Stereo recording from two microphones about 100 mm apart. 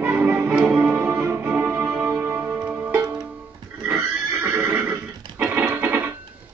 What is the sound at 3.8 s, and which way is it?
Horse, 20° right (ahead or behind).